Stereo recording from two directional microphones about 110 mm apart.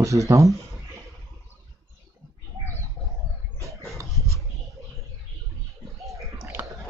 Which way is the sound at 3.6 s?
30° right (ahead or behind).